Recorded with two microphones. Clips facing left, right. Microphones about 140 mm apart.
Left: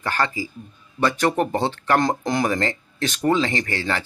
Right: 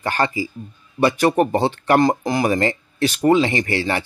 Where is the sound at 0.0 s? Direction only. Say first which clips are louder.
Right 3 dB; 15° right (ahead or behind).